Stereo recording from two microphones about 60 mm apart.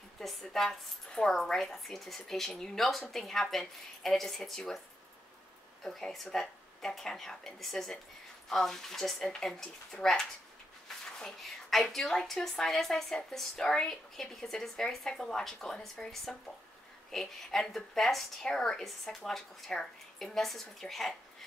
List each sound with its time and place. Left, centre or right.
0.2 s a woman's voice: centre
5.9 s a woman's voice: centre